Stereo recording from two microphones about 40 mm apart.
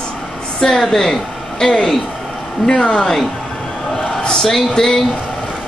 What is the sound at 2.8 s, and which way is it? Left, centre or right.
Speech, left.